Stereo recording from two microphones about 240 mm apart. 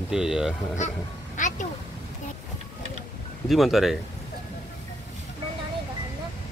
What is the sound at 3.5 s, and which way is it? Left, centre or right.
Speech, centre.